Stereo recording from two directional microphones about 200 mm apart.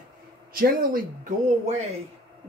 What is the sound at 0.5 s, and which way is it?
Speech, 45° right (ahead or behind).